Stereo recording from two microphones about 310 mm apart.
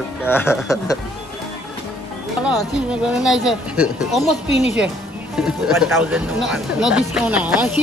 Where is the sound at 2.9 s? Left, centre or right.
Centre.